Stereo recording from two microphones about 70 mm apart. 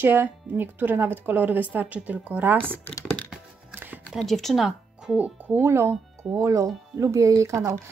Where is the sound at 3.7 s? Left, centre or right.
Right.